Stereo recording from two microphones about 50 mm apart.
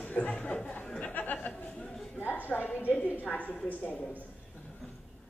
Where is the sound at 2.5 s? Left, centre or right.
Centre.